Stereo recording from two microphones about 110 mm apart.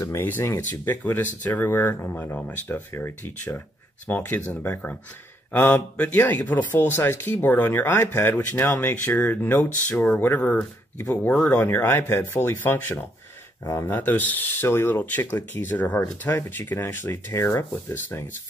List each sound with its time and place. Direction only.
0.0 s speech: 20° left (ahead or behind)